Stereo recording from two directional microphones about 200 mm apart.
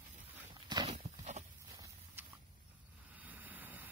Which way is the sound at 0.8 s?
35° right (ahead or behind).